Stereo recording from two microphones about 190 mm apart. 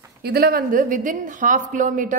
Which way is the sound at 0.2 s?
55° right (ahead or behind).